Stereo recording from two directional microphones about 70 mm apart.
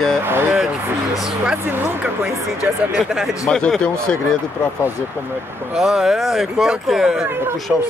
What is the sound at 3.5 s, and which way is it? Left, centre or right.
Speech, centre.